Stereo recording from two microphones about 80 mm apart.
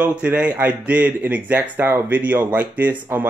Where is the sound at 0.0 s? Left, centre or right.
Right.